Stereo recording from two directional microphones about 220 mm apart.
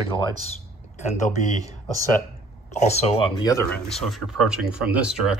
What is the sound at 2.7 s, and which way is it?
Speech, 30° left (ahead or behind).